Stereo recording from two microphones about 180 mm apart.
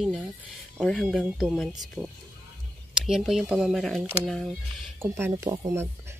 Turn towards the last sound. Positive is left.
turn(degrees=-20)  # may be behind; listen again after turning